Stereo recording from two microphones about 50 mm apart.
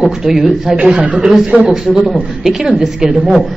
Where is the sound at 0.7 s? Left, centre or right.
Centre.